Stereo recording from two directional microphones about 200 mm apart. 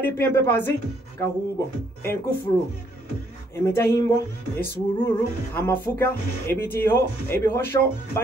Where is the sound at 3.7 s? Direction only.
15° left (ahead or behind).